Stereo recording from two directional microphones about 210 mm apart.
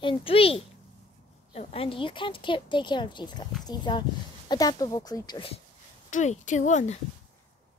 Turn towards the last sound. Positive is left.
turn(degrees=35)  # may be behind; listen again after turning